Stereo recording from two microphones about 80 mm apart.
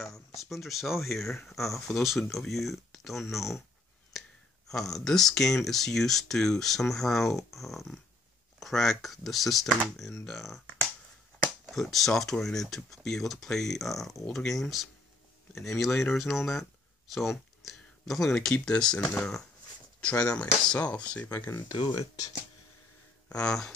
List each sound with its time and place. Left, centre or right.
0.0 s speech: centre
4.6 s speech: centre
11.7 s speech: centre
21.3 s speech: left
21.7 s speech: left
23.2 s a sound: centre